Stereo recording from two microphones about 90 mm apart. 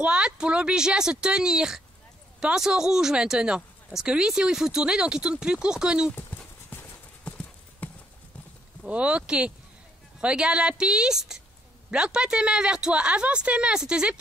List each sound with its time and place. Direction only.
0.0 s speech: 10° right (ahead or behind)
6.1 s clip-clop: 25° left (ahead or behind)
8.8 s speech: 15° right (ahead or behind)